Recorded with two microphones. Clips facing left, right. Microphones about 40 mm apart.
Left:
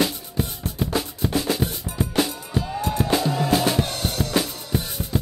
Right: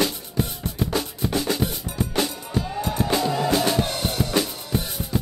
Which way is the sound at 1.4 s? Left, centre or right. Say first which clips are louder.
Even; centre.